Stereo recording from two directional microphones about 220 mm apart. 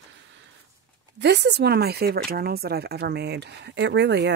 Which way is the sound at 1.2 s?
50° right (ahead or behind).